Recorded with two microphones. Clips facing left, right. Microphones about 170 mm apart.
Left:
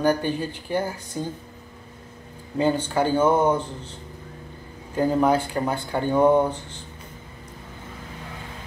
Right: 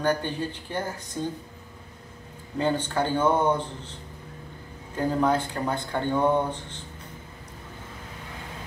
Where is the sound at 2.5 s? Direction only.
10° left (ahead or behind).